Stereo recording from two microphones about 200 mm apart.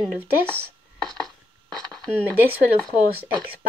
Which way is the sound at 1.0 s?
Centre (ahead or behind).